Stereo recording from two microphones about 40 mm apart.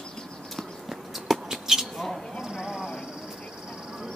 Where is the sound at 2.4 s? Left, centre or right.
Centre.